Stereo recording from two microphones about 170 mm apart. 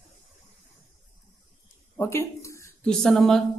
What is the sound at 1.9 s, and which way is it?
Speech, 15° left (ahead or behind).